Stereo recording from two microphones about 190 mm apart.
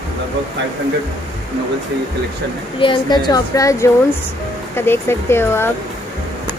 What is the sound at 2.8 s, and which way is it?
Speech, 25° left (ahead or behind).